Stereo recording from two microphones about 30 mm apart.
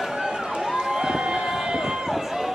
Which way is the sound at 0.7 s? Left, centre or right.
Centre.